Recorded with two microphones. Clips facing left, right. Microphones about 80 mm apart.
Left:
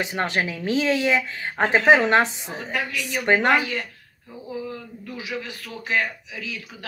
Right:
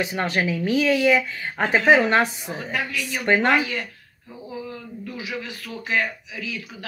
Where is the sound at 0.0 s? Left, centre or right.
Left.